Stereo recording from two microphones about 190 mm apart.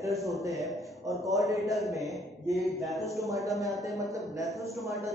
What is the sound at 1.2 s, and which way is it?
Speech, 15° right (ahead or behind).